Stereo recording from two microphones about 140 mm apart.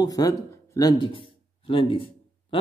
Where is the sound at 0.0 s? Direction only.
25° left (ahead or behind).